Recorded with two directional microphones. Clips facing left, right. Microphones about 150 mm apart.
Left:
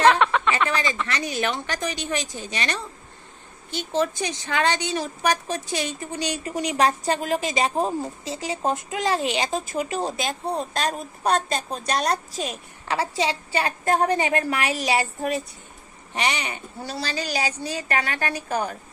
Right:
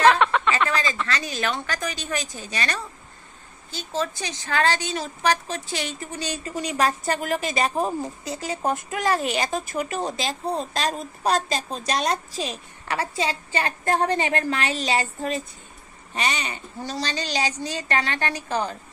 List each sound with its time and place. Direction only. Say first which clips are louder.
0.0 s a sound: even; centre (ahead or behind)
0.7 s a sound: even; 20° left (ahead or behind)
1.0 s a woman's voice: left 1 dB; 15° left (ahead or behind)
4.1 s a woman's voice: left 1 dB; 20° left (ahead or behind)
10.1 s a woman's voice: even; centre (ahead or behind)
12.8 s a woman's voice: left 2 dB; 15° left (ahead or behind)